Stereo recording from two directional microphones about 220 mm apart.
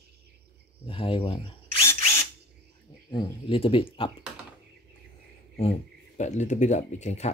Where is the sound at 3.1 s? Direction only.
20° left (ahead or behind).